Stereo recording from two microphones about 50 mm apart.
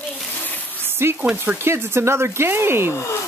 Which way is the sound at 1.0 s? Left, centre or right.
Right.